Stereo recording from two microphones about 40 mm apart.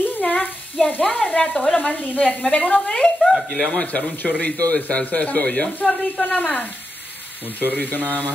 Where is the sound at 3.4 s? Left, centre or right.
Centre.